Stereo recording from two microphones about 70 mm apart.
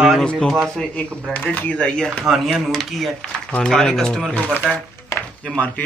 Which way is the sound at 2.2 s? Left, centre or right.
Centre.